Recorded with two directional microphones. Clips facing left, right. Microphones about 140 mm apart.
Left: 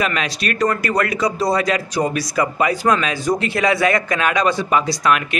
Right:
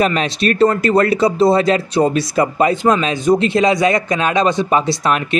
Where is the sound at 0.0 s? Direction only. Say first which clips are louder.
Right 6 dB; 30° right (ahead or behind).